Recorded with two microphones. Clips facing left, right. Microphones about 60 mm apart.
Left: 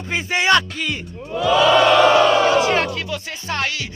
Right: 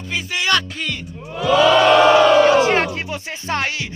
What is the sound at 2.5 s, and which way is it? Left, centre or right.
Speech, right.